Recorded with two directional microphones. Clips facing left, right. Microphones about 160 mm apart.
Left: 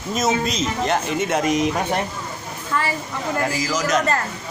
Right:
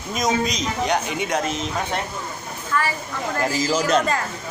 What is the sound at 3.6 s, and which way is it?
Speech, 30° right (ahead or behind).